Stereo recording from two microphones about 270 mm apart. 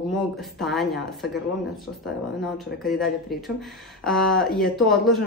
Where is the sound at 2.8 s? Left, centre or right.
Centre.